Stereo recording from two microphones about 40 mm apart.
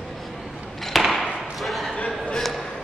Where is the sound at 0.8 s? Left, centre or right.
Centre.